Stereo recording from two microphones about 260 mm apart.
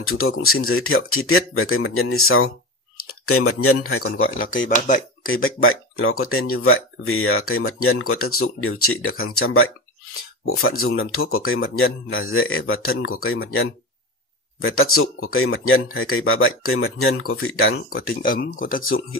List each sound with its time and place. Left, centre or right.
0.0 s speech: left
4.6 s speech: left
5.3 s speech: left
17.8 s speech: left